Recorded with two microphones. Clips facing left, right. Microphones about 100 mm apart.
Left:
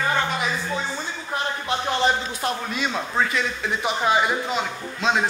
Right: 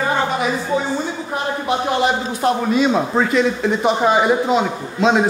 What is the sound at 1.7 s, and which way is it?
Speech, 15° right (ahead or behind).